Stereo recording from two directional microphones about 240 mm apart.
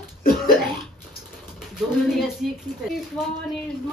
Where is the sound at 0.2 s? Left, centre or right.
Left.